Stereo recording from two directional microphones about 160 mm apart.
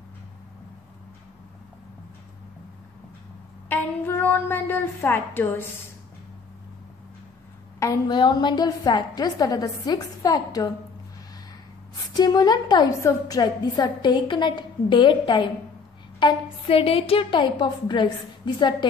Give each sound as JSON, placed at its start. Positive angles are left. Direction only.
{"t": 3.6, "sound": "a woman's voice", "side_deg": 10}
{"t": 7.8, "sound": "a woman's voice", "side_deg": 25}
{"t": 12.1, "sound": "a woman's voice", "side_deg": 25}